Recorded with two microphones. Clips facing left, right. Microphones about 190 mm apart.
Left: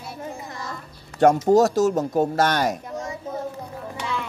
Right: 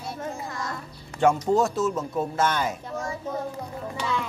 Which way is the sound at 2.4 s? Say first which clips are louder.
Even; 75° left (ahead or behind).